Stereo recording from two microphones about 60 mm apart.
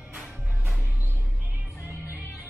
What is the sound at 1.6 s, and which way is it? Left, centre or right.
Music, right.